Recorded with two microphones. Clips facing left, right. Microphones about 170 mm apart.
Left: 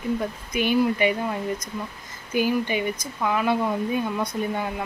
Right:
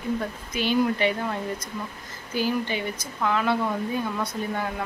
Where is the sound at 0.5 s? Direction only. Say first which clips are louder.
Left 2 dB; 10° left (ahead or behind).